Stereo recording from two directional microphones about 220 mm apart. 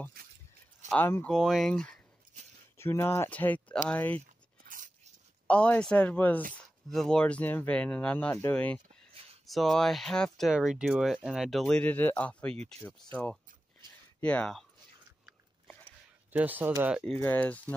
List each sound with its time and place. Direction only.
0.8 s speech: 10° left (ahead or behind)
4.6 s biting: 35° right (ahead or behind)
5.5 s speech: 5° left (ahead or behind)
16.3 s speech: 10° right (ahead or behind)
17.2 s speech: 10° left (ahead or behind)